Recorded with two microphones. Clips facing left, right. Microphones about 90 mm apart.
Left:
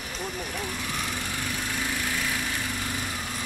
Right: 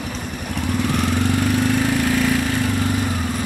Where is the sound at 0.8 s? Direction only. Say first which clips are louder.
Right 13 dB; 70° right (ahead or behind).